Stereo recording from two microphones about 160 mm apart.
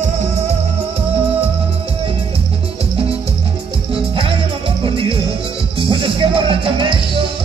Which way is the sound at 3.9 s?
35° right (ahead or behind).